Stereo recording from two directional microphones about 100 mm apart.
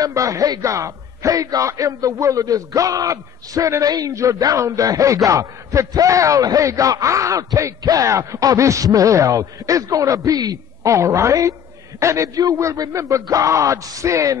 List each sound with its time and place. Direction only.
0.0 s a man's voice: 35° right (ahead or behind)